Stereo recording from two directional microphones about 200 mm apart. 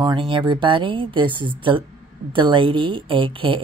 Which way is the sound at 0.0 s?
25° right (ahead or behind).